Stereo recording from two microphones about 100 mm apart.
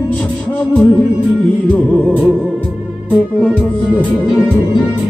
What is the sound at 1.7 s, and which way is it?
Music, 15° left (ahead or behind).